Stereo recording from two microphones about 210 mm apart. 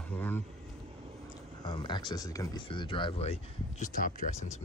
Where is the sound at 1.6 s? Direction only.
20° left (ahead or behind).